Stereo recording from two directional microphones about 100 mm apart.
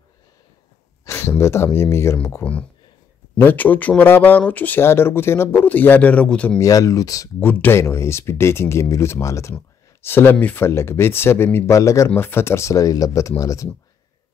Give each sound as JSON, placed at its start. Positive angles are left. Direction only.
{"t": 1.0, "sound": "speech", "side_deg": 25}
{"t": 3.3, "sound": "speech", "side_deg": 15}
{"t": 6.6, "sound": "speech", "side_deg": 35}
{"t": 7.4, "sound": "speech", "side_deg": 20}